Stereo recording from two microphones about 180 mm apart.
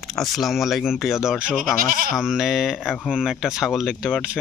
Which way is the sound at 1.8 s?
50° right (ahead or behind).